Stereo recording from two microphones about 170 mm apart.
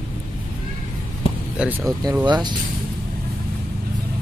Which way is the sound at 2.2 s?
25° right (ahead or behind).